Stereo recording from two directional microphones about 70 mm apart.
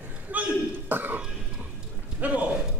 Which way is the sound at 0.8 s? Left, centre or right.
Right.